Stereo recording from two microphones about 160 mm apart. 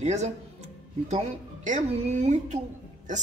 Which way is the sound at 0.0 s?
45° right (ahead or behind).